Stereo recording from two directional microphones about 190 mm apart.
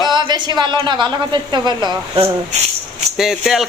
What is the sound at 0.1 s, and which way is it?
A woman's voice, 20° right (ahead or behind).